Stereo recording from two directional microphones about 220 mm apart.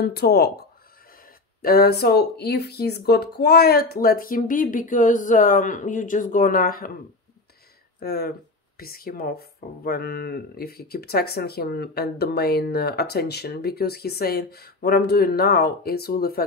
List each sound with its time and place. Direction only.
0.0 s speech: 45° left (ahead or behind)
8.0 s speech: 45° left (ahead or behind)